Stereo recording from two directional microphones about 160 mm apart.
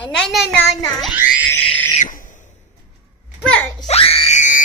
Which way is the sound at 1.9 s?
55° left (ahead or behind).